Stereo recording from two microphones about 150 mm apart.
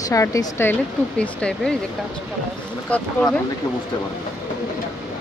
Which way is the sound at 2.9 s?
10° left (ahead or behind).